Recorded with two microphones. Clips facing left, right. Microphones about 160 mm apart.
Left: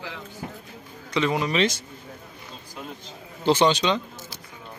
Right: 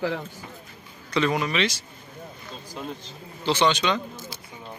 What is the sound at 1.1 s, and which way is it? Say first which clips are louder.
Speech: even; 20° left (ahead or behind).